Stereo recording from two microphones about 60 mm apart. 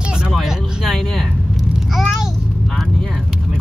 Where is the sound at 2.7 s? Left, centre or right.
Centre.